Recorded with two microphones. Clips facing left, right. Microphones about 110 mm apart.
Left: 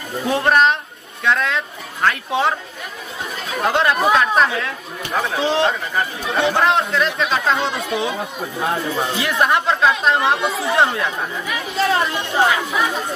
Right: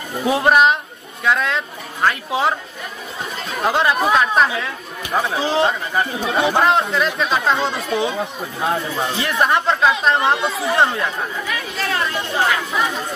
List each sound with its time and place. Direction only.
0.2 s speech: 5° right (ahead or behind)
3.6 s speech: 5° right (ahead or behind)
11.9 s speech: 25° left (ahead or behind)